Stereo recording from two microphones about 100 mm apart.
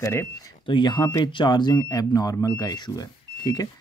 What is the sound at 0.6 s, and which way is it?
Speech, 50° left (ahead or behind).